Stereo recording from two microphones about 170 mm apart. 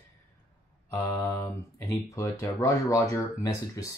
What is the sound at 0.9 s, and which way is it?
Speech, 15° left (ahead or behind).